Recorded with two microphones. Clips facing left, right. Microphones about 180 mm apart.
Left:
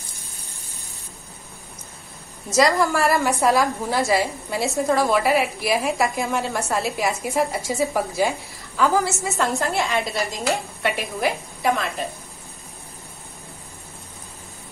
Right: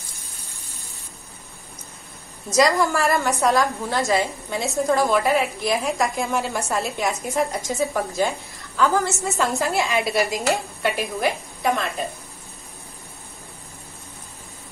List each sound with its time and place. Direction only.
2.5 s a woman's voice: centre (ahead or behind)